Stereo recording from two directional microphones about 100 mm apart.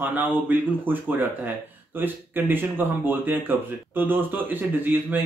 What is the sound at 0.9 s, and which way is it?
Speech, 20° right (ahead or behind).